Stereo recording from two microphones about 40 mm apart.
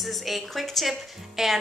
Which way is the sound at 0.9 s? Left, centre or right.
Centre.